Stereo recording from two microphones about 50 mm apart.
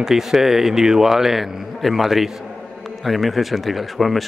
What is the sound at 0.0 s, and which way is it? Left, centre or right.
A man's voice, centre.